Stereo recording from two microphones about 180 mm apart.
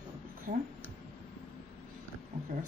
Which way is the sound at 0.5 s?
55° right (ahead or behind).